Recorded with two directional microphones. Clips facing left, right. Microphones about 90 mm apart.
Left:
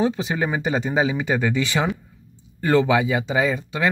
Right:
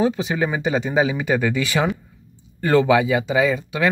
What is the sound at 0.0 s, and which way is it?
Speech, 35° left (ahead or behind).